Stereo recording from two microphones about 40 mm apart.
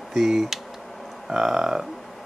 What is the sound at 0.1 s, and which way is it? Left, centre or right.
Speech, centre.